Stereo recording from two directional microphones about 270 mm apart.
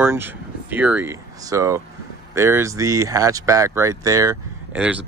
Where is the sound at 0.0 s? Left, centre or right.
Centre.